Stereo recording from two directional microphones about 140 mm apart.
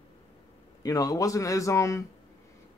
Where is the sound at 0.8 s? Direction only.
25° left (ahead or behind).